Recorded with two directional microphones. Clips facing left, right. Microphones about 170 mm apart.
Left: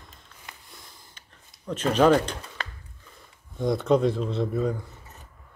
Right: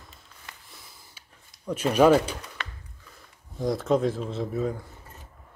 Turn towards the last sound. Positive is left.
turn(degrees=-5)  # may be behind; listen again after turning